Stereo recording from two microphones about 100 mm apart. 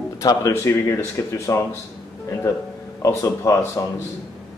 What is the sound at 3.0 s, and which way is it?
Speech, 35° left (ahead or behind).